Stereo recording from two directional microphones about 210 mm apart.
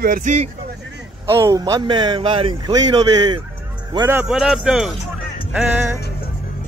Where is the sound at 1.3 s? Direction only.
15° right (ahead or behind).